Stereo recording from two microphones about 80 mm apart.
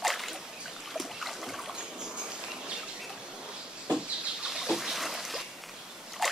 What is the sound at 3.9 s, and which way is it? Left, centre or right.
Trickle, centre.